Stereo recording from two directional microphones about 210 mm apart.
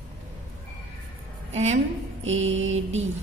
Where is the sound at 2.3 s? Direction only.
65° right (ahead or behind).